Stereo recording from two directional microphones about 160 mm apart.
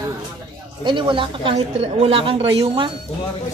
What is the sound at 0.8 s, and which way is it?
A woman's voice, 30° right (ahead or behind).